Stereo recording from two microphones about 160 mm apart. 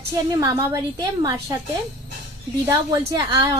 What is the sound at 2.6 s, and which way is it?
Speech, 20° right (ahead or behind).